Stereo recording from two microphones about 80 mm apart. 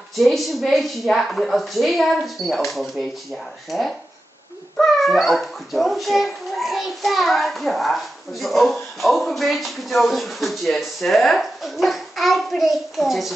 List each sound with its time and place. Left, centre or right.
0.1 s a child's voice: centre